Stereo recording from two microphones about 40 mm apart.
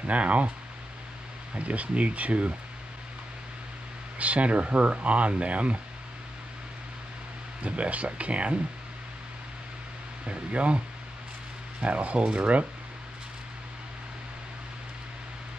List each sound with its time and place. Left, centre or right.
0.0 s speech: right
1.5 s speech: right
4.2 s speech: right
7.6 s speech: right
10.2 s speech: right
11.8 s speech: right